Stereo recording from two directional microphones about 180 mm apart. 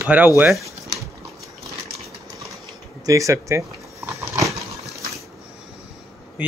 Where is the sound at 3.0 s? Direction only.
15° right (ahead or behind).